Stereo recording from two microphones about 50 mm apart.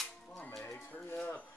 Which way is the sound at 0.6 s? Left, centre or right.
Left.